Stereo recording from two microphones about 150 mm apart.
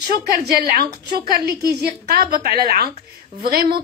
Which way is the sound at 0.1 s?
90° right.